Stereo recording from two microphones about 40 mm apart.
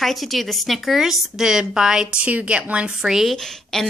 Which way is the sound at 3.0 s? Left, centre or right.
Centre.